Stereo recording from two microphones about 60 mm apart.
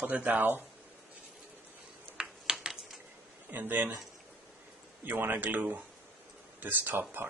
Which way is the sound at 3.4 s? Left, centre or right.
Right.